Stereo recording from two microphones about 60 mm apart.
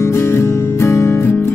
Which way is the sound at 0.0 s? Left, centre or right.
Left.